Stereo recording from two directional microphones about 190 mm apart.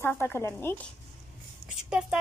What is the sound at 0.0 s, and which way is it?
Speech, 10° left (ahead or behind).